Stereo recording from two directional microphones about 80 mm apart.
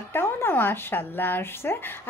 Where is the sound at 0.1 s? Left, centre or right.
Left.